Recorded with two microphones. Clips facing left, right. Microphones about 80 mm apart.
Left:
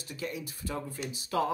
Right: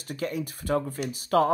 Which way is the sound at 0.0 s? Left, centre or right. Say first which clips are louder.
Right 7 dB; right.